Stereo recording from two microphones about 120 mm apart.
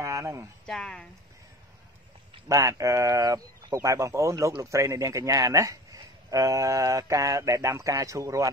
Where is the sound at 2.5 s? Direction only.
25° right (ahead or behind).